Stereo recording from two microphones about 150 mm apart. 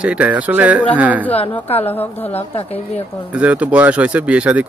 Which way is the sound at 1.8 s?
15° left (ahead or behind).